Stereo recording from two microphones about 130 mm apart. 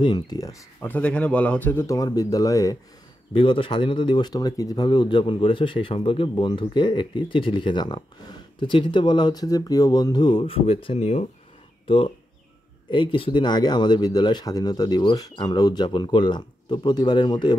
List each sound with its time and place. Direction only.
0.0 s speech: 35° left (ahead or behind)
0.8 s speech: 10° left (ahead or behind)
1.9 s speech: 30° left (ahead or behind)
3.3 s speech: 40° left (ahead or behind)
12.9 s speech: 40° left (ahead or behind)